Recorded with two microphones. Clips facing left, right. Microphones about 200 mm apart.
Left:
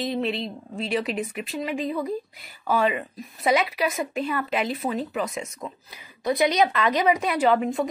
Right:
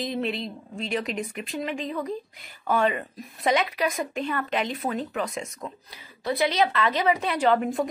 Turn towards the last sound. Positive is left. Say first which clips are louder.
# left 1 dB
turn(degrees=0)  # may be behind; listen again after turning